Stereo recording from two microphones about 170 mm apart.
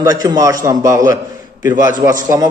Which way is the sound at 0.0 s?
20° right (ahead or behind).